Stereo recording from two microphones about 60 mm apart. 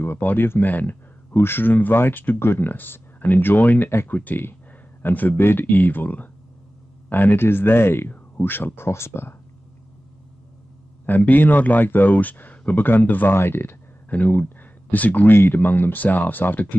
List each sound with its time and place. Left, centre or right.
0.2 s speech: left
11.1 s speech: left
14.1 s speech: left